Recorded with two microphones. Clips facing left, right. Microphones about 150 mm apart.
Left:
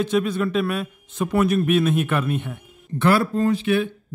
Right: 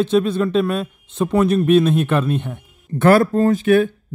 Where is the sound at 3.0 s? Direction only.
45° right (ahead or behind).